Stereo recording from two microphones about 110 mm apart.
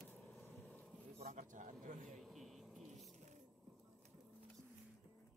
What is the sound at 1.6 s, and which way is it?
Speech, 90° right.